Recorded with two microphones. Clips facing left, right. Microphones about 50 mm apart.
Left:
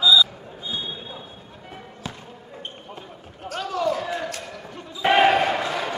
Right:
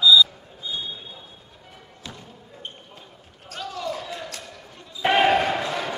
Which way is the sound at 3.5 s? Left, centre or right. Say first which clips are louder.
Left 6 dB; left.